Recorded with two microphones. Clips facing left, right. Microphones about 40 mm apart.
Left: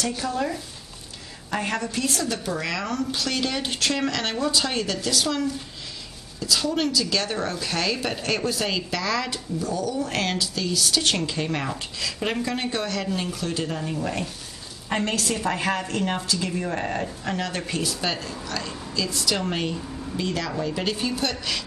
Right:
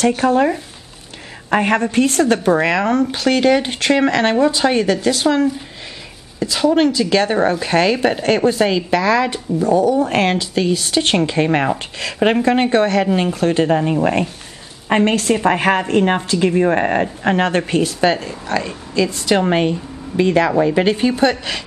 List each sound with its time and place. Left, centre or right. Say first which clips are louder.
0.0 s speech: right 12 dB; right